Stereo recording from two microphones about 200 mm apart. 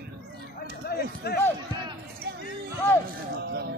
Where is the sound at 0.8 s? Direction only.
50° left (ahead or behind).